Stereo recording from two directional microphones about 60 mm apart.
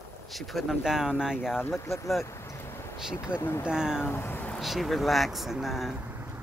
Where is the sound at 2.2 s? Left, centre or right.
Left.